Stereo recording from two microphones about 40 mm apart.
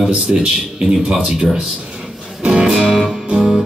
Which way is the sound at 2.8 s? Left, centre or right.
Centre.